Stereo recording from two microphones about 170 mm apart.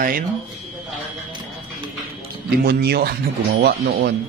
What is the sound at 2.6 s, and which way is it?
Speech, 70° right (ahead or behind).